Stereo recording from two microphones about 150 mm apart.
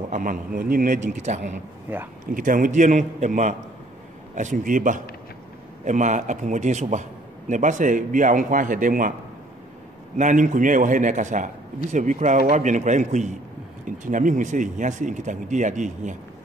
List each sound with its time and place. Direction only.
0.1 s a man's voice: 65° right (ahead or behind)
1.9 s speech: 15° right (ahead or behind)
2.3 s a man's voice: 65° right (ahead or behind)
10.1 s a man's voice: 55° right (ahead or behind)